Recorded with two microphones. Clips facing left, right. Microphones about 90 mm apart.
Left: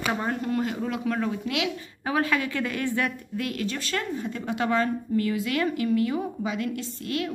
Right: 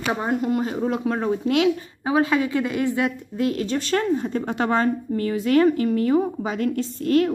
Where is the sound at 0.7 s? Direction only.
30° right (ahead or behind).